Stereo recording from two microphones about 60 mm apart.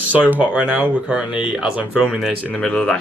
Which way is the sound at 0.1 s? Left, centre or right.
Right.